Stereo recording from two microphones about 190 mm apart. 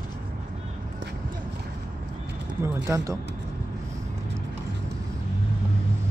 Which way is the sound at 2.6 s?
15° right (ahead or behind).